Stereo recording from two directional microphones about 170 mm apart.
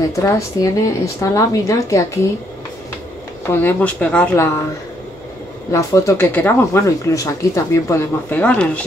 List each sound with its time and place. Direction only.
0.1 s a woman's voice: 15° left (ahead or behind)
3.4 s speech: 10° left (ahead or behind)
5.7 s speech: 20° left (ahead or behind)